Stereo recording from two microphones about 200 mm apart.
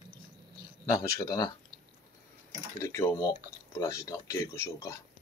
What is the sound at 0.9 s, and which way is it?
Speech, 15° left (ahead or behind).